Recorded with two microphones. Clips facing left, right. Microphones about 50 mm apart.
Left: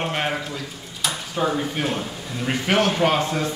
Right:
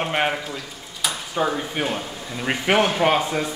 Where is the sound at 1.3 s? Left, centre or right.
Centre.